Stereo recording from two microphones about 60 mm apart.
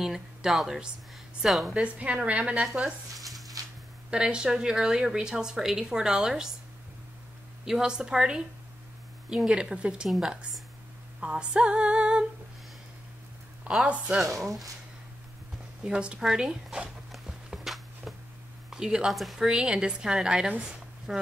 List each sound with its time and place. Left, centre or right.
0.0 s a woman's voice: centre
1.7 s a woman's voice: centre
2.6 s speech: centre
3.2 s a sound: centre
4.1 s speech: centre
7.6 s speech: centre
11.1 s female singing: centre
13.7 s speech: centre
15.8 s speech: centre
17.1 s walk: centre
18.7 s speech: centre
19.1 s a woman's voice: centre
19.4 s speech: centre